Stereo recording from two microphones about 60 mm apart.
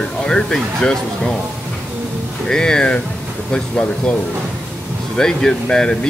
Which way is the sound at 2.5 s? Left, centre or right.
Centre.